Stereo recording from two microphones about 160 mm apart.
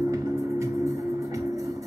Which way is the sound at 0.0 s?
20° right (ahead or behind).